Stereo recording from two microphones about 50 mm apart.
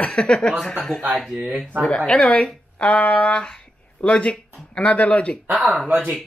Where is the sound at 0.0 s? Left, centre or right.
Left.